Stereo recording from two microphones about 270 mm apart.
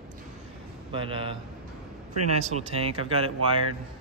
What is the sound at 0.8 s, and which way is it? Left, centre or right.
Speech, centre.